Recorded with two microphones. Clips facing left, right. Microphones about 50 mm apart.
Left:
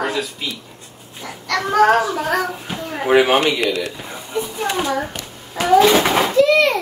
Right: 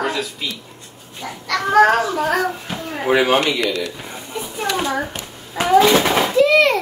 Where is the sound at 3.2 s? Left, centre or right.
Centre.